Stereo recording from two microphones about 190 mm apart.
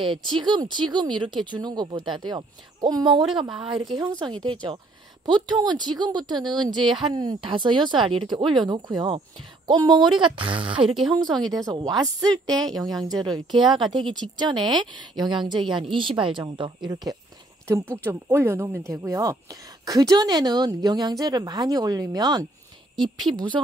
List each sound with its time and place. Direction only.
0.0 s speech: 25° right (ahead or behind)
3.6 s speech: centre (ahead or behind)
3.9 s speech: 25° right (ahead or behind)
10.9 s speech: centre (ahead or behind)
11.5 s speech: 20° right (ahead or behind)